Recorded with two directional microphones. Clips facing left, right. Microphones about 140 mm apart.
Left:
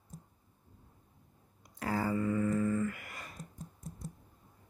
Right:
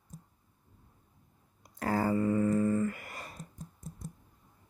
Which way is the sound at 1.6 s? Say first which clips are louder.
Right 4 dB; 45° right (ahead or behind).